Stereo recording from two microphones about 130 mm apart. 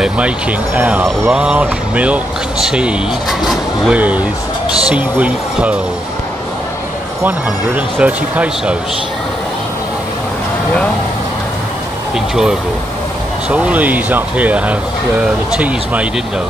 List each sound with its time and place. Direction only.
0.0 s speech: 10° right (ahead or behind)
7.2 s speech: 10° right (ahead or behind)
13.5 s speech: 10° right (ahead or behind)